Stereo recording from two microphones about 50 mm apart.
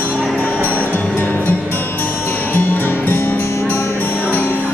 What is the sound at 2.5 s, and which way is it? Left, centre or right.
Music, left.